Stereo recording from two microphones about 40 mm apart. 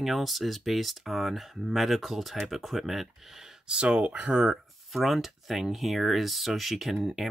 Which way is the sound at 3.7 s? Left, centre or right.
Right.